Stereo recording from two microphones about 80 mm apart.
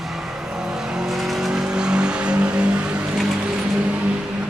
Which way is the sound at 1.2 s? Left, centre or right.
Centre.